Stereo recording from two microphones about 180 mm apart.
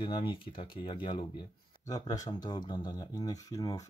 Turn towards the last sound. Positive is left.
turn(degrees=20)  # may be behind; listen again after turning